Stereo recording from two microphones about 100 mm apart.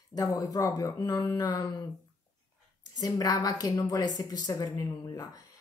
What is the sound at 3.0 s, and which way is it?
A woman's voice, 35° left (ahead or behind).